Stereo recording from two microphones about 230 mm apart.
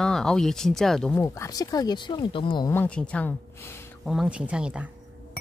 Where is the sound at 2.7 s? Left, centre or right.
Centre.